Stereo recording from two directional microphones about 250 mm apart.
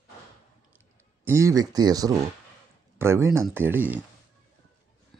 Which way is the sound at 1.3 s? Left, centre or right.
Centre.